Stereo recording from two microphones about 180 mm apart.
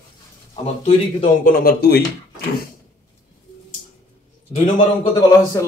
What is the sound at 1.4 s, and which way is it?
Speech, 60° left (ahead or behind).